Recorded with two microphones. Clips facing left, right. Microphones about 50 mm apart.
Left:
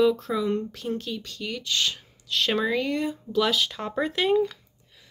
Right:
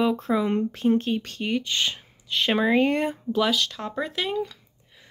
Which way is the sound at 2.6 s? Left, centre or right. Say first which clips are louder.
Right 4 dB; right.